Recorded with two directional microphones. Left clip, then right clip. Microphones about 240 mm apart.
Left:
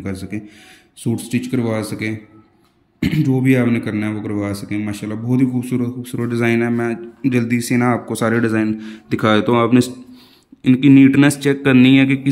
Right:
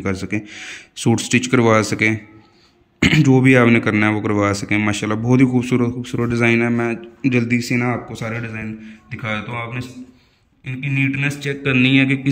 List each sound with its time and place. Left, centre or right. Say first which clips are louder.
0.0 s a man's voice: right 5 dB; centre